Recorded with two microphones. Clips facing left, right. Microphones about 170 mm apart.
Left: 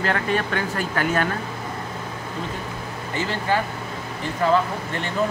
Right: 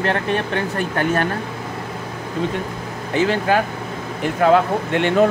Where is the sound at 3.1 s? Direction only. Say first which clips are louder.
Right 6 dB; 70° right (ahead or behind).